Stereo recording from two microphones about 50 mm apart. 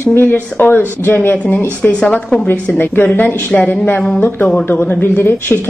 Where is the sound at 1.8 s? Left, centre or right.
Left.